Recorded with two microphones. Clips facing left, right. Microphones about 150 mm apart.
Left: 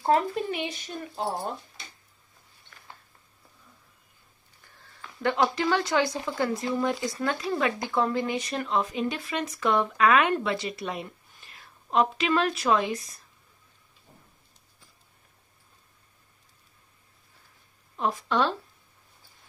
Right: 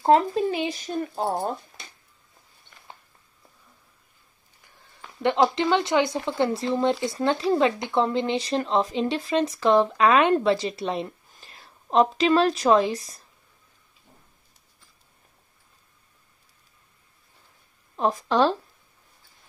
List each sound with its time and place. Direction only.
0.0 s speech: 30° right (ahead or behind)
5.2 s speech: 20° right (ahead or behind)
17.9 s speech: 35° right (ahead or behind)